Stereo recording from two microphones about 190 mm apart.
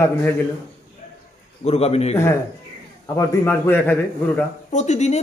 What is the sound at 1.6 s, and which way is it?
Speech, 35° left (ahead or behind).